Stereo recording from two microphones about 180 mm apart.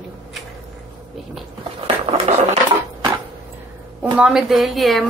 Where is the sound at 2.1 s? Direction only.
35° right (ahead or behind).